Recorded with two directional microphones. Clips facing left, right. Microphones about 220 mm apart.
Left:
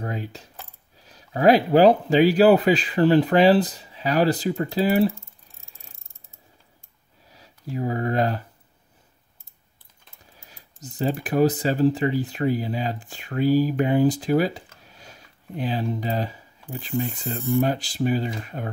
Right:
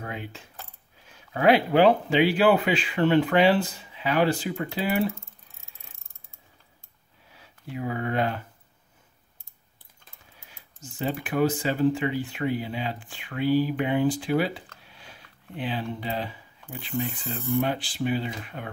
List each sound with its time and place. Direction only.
0.0 s coin: 40° left (ahead or behind)
0.9 s speech: 35° left (ahead or behind)
7.2 s speech: 40° left (ahead or behind)
10.4 s speech: 40° left (ahead or behind)
14.8 s sniff: 40° left (ahead or behind)
16.8 s speech: 40° left (ahead or behind)